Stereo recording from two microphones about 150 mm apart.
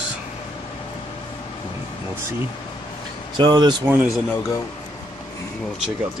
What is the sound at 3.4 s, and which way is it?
Speech, 30° right (ahead or behind).